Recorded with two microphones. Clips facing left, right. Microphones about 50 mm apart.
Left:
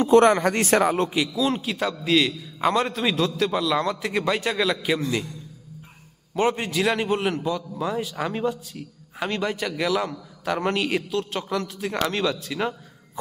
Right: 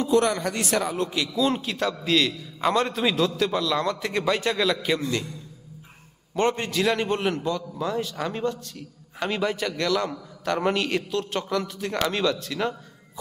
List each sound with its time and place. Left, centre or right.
0.0 s a man's voice: left
1.3 s a man's voice: centre
6.3 s a man's voice: centre